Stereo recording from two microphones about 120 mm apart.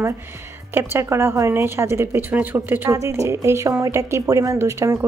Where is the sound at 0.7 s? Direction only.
20° right (ahead or behind).